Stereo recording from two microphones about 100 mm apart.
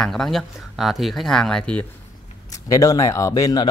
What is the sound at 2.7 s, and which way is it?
Speech, 35° left (ahead or behind).